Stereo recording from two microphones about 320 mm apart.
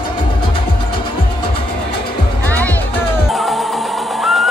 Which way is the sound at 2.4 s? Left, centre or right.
Centre.